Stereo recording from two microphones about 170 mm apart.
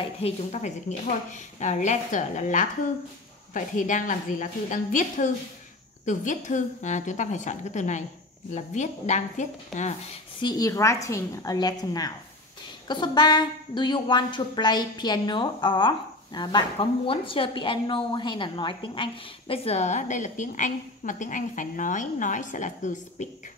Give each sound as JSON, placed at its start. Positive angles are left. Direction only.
{"t": 0.0, "sound": "a woman's voice", "side_deg": 40}
{"t": 10.4, "sound": "a woman's voice", "side_deg": 20}